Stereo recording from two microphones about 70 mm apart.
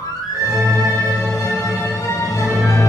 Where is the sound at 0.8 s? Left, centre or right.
Left.